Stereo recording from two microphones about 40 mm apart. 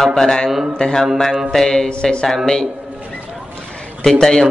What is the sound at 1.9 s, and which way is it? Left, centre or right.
Speech, left.